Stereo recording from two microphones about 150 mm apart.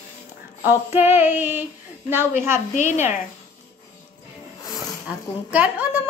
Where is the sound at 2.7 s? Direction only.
55° left (ahead or behind).